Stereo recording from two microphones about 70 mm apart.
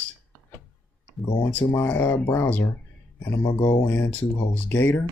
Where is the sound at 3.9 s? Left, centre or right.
Left.